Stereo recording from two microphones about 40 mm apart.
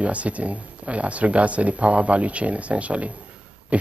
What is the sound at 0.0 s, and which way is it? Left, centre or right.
Speech, right.